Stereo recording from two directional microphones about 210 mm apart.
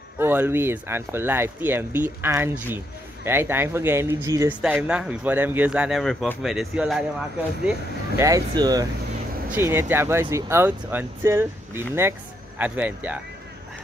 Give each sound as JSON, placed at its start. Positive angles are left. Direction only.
{"t": 0.2, "sound": "a man's voice", "side_deg": -10}
{"t": 8.2, "sound": "speech", "side_deg": -15}